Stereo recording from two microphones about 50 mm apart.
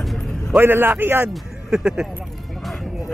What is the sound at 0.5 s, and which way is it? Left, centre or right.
Speech, right.